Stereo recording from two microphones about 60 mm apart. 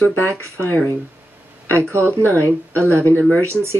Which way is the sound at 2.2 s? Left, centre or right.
Left.